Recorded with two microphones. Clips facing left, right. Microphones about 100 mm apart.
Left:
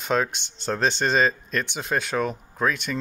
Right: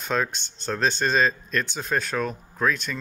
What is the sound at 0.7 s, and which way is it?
Speech, 25° left (ahead or behind).